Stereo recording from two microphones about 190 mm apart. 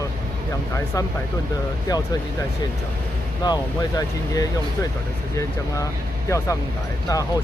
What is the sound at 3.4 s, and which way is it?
Speech, 20° left (ahead or behind).